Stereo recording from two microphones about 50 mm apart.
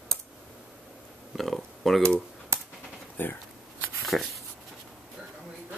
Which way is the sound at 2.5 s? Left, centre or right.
Right.